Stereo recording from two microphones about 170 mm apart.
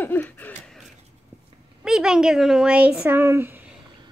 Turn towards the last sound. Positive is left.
turn(degrees=-10)  # may be behind; listen again after turning